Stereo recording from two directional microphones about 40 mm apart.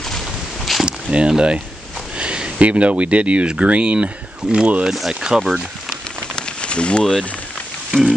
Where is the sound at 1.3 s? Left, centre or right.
Right.